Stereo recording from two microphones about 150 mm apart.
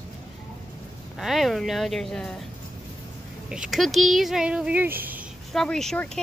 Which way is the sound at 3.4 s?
5° right (ahead or behind).